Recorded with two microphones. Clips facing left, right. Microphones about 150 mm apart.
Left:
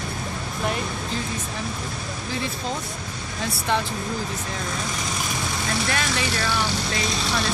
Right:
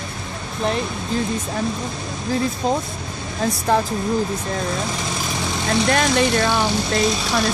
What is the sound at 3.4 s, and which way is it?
Speech, 35° right (ahead or behind).